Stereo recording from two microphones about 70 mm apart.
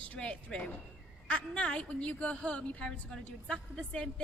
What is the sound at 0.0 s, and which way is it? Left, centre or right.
A woman's voice, centre.